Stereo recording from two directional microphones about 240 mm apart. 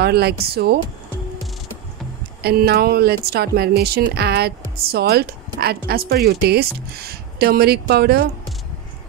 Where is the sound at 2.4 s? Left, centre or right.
Right.